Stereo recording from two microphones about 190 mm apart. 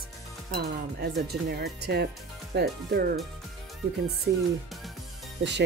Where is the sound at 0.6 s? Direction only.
55° right (ahead or behind).